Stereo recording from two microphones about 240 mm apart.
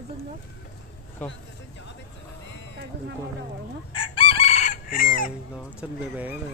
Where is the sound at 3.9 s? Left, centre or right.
Left.